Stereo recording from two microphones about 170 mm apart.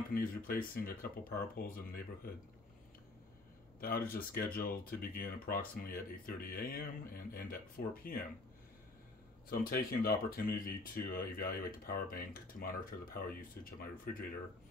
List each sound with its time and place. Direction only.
0.1 s speech: 60° left (ahead or behind)
3.8 s speech: 60° left (ahead or behind)
9.5 s speech: 60° left (ahead or behind)